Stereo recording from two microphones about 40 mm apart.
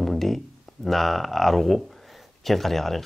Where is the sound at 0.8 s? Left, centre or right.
Centre.